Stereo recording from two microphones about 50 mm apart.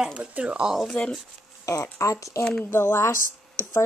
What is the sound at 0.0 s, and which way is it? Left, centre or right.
Speech, centre.